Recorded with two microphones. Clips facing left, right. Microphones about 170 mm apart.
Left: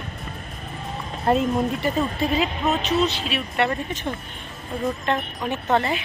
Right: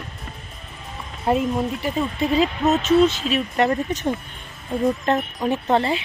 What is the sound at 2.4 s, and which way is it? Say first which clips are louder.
Speech: right 4 dB; 45° right (ahead or behind).